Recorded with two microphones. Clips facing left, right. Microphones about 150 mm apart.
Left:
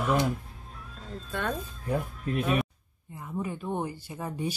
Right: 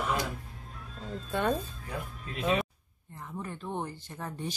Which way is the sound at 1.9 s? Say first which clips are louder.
Left 11 dB; 55° left (ahead or behind).